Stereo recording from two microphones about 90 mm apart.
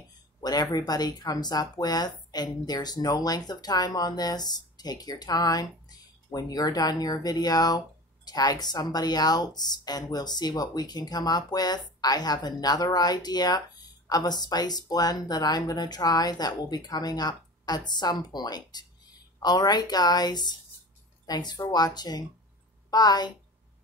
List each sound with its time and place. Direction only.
0.4 s a woman's voice: 50° left (ahead or behind)